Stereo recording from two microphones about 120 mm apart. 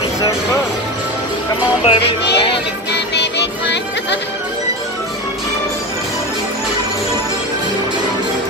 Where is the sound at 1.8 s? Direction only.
45° left (ahead or behind).